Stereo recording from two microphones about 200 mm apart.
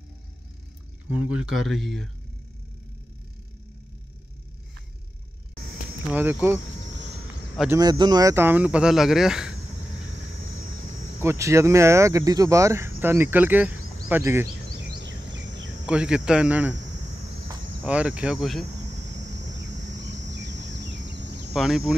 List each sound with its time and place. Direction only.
1.1 s speech: 5° right (ahead or behind)
6.0 s speech: 10° right (ahead or behind)
7.7 s speech: 20° right (ahead or behind); by 9.6 s centre (ahead or behind)
11.1 s speech: 15° right (ahead or behind)
15.8 s speech: 5° right (ahead or behind)
20.3 s a sound: 60° right (ahead or behind)
21.5 s speech: centre (ahead or behind)